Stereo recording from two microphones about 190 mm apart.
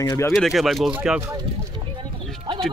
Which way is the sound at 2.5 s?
20° right (ahead or behind).